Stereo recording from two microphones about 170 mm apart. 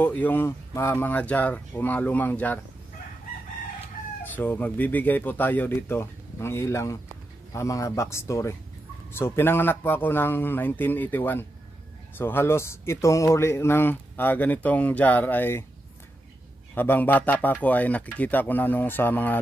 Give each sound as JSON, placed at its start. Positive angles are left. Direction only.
{"t": 0.0, "sound": "speech", "side_deg": 10}
{"t": 4.4, "sound": "speech", "side_deg": 10}
{"t": 16.7, "sound": "speech", "side_deg": 10}